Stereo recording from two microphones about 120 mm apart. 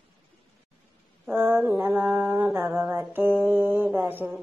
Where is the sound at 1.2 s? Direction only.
15° right (ahead or behind).